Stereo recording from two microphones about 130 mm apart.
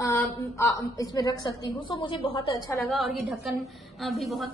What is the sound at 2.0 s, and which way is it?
Speech, 40° left (ahead or behind).